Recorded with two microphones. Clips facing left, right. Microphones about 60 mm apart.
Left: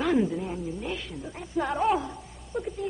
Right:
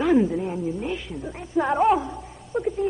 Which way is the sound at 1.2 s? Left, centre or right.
Centre.